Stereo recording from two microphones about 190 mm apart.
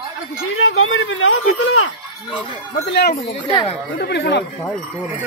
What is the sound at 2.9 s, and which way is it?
Speech, 60° left (ahead or behind).